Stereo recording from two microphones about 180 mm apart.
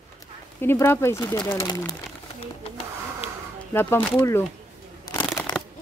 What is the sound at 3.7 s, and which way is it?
Speech, 10° left (ahead or behind).